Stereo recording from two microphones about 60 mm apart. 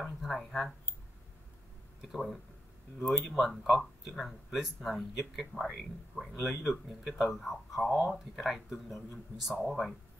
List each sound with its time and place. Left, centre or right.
0.0 s speech: centre
2.0 s speech: centre